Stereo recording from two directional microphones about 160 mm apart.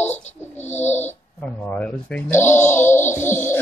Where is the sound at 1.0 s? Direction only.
10° left (ahead or behind).